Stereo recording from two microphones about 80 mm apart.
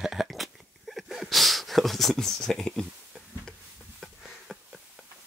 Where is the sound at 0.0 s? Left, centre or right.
Centre.